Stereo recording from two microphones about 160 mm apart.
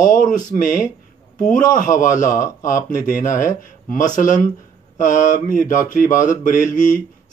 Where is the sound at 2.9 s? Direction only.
60° left (ahead or behind).